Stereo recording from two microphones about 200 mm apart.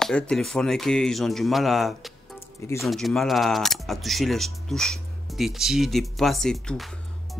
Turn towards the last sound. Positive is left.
turn(degrees=0)  # may be behind; listen again after turning